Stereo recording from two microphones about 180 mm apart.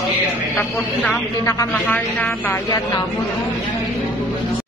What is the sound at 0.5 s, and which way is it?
Speech, 10° left (ahead or behind).